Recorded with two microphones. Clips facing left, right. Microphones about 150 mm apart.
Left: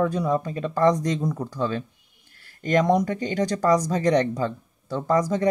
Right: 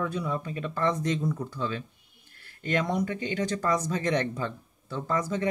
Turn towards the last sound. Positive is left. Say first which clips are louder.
# left 7 dB
turn(degrees=40)  # may be behind; listen again after turning